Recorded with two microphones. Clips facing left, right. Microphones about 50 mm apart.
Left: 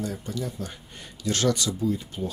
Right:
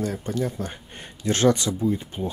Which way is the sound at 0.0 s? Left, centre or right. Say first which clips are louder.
Right 5 dB; right.